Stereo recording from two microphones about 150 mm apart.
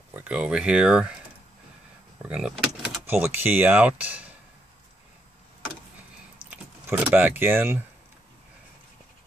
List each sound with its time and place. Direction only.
0.1 s speech: 10° right (ahead or behind)
2.2 s speech: 5° right (ahead or behind)
6.9 s speech: 10° right (ahead or behind)